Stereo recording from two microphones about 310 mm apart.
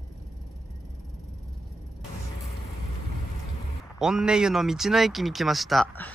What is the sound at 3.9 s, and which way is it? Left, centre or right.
Speech, centre.